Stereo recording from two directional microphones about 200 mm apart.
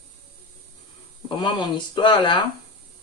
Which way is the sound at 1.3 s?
20° left (ahead or behind).